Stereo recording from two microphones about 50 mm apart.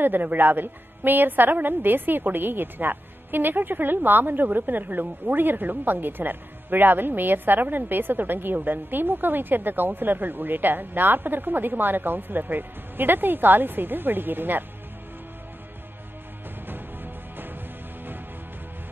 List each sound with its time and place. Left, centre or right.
0.0 s a woman's voice: right
16.6 s music: right